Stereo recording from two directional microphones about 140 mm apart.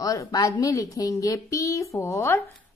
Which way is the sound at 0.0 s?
25° left (ahead or behind).